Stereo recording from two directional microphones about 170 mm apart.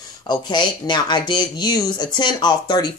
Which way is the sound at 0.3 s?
25° left (ahead or behind).